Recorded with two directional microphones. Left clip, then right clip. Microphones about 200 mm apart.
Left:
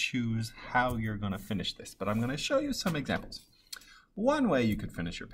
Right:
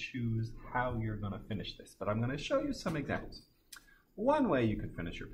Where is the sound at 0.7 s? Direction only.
40° left (ahead or behind).